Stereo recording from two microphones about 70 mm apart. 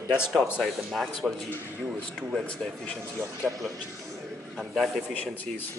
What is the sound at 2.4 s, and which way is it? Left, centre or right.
Speech, centre.